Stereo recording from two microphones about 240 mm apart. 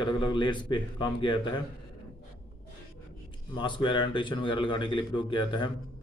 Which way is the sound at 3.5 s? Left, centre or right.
Centre.